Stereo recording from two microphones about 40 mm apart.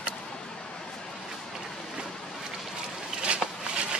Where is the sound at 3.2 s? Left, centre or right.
Right.